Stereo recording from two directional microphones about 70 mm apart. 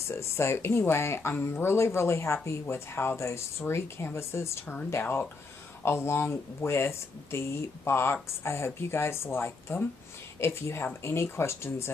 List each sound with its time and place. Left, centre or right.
0.1 s speech: left
5.9 s speech: left